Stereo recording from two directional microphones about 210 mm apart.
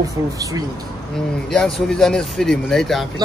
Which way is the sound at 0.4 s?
15° right (ahead or behind).